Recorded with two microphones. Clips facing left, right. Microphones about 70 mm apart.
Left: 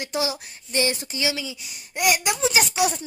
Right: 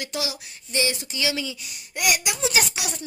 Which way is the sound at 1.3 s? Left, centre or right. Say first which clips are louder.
Right 2 dB; centre.